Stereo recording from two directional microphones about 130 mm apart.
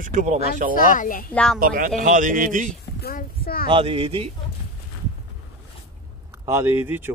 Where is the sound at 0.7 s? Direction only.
90° left.